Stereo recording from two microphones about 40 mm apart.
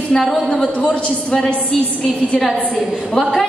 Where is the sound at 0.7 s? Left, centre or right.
Left.